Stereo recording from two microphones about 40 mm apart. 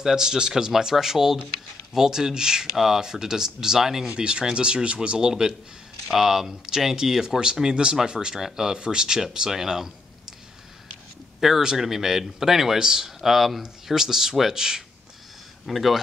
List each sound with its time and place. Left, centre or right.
0.0 s speech: centre
2.6 s speech: centre
4.1 s speech: right
6.1 s speech: centre
11.4 s speech: centre
13.2 s speech: centre
15.6 s speech: centre